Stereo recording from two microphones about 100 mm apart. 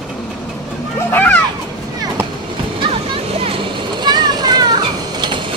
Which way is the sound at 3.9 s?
45° right (ahead or behind).